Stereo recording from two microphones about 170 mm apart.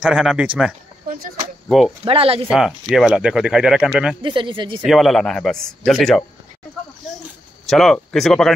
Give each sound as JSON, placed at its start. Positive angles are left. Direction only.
{"t": 0.0, "sound": "speech", "side_deg": -5}
{"t": 2.0, "sound": "speech", "side_deg": -35}
{"t": 2.5, "sound": "speech", "side_deg": 0}
{"t": 4.2, "sound": "speech", "side_deg": -30}
{"t": 4.8, "sound": "speech", "side_deg": 0}
{"t": 7.6, "sound": "speech", "side_deg": 0}